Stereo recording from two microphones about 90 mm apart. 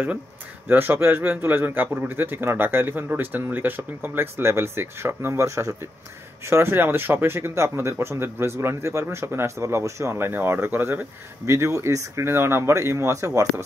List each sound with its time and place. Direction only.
0.7 s speech: 25° right (ahead or behind)